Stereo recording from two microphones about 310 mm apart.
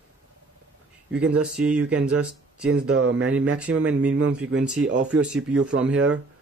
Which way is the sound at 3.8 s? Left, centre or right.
Centre.